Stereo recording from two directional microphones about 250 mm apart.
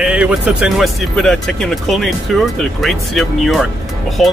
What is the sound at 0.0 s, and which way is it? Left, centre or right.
Speech, centre.